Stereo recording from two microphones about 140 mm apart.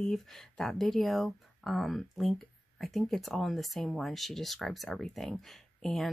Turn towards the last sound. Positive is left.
turn(degrees=5)  # may be behind; listen again after turning